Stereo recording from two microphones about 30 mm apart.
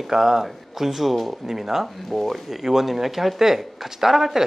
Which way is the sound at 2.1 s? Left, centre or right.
Centre.